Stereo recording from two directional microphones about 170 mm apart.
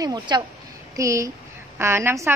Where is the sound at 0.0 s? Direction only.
25° right (ahead or behind).